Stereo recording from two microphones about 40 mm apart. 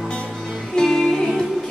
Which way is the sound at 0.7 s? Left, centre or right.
Centre.